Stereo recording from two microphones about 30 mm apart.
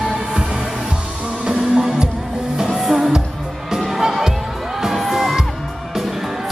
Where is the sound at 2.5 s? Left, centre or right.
Right.